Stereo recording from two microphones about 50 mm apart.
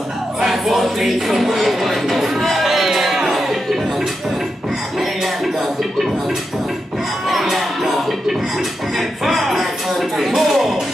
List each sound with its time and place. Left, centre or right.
0.4 s music: centre
7.2 s music: centre